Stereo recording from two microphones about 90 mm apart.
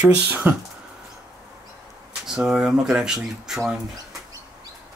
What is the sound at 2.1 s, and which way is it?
Speech, 10° right (ahead or behind).